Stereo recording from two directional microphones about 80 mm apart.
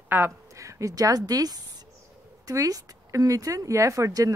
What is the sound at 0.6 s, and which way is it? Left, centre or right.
Speech, right.